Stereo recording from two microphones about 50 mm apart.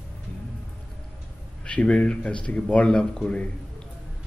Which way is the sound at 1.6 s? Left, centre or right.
Left.